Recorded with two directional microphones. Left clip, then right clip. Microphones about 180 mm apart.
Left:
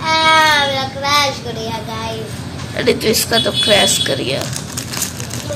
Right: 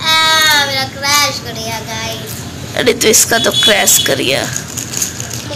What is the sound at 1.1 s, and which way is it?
Child singing, 55° left (ahead or behind).